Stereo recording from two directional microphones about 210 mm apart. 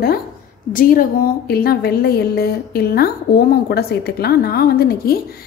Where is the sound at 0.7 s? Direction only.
45° left (ahead or behind).